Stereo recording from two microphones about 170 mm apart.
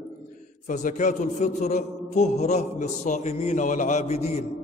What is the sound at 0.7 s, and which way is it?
Music, 45° left (ahead or behind).